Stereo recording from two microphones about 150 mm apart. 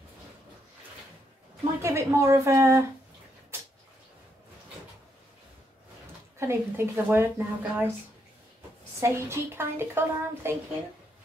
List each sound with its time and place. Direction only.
1.8 s a woman's voice: 20° right (ahead or behind)
6.3 s speech: 15° right (ahead or behind)
9.0 s speech: 15° right (ahead or behind)